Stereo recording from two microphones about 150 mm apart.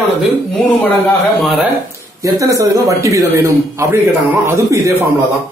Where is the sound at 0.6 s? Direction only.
10° left (ahead or behind).